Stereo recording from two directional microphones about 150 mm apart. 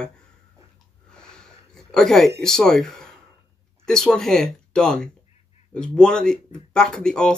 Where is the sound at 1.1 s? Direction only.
5° left (ahead or behind).